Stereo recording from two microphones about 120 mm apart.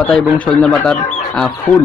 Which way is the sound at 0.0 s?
5° left (ahead or behind).